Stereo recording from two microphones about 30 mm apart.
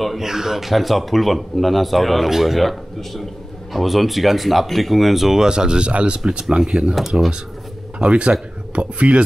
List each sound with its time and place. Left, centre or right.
0.2 s speech: centre
5.4 s speech: right
5.9 s speech: right
6.7 s speech: centre
8.0 s speech: right